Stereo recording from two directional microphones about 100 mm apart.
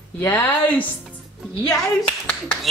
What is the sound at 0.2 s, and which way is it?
Speech, 15° left (ahead or behind).